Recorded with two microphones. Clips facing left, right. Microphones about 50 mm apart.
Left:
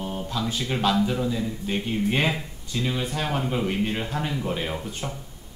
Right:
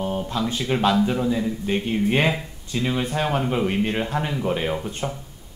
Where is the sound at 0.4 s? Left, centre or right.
Right.